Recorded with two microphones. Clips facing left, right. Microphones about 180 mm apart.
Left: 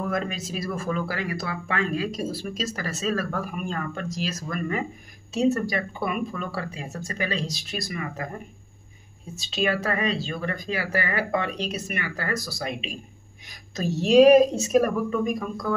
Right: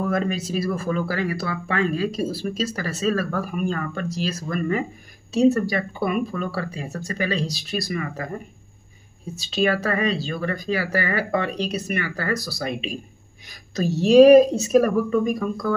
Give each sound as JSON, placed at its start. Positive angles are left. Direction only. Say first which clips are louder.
{"t": 0.1, "sound": "speech", "louder": "right 5 dB", "side_deg": -35}
{"t": 9.3, "sound": "speech", "louder": "right 4 dB", "side_deg": -35}